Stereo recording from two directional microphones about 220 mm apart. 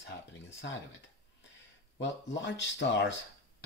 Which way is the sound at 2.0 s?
55° left (ahead or behind).